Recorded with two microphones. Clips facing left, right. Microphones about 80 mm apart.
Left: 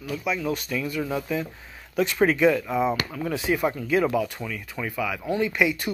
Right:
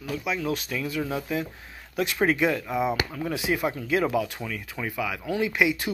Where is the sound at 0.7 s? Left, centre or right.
Right.